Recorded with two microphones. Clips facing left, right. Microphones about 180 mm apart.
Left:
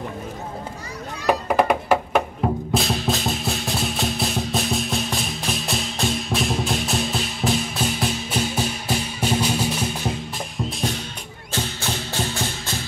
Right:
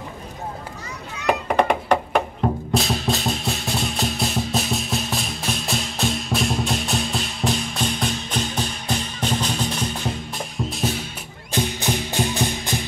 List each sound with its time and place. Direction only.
1.2 s meow: 5° left (ahead or behind)
2.7 s music: centre (ahead or behind)
11.5 s music: 15° right (ahead or behind)